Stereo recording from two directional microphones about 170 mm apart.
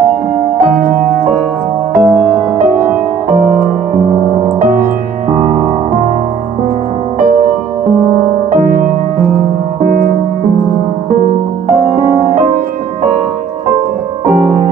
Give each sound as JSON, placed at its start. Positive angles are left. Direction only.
{"t": 2.0, "sound": "music", "side_deg": -25}
{"t": 8.5, "sound": "music", "side_deg": -55}